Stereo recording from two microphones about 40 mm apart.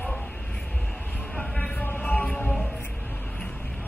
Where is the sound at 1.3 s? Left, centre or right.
Left.